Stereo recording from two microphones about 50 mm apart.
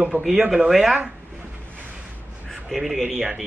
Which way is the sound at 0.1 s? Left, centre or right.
Right.